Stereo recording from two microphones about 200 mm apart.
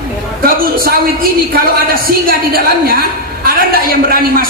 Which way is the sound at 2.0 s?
45° right (ahead or behind).